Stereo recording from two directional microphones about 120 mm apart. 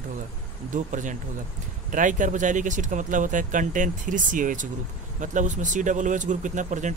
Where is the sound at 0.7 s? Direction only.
90° right.